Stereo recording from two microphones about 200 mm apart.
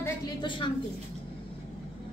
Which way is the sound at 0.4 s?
25° left (ahead or behind).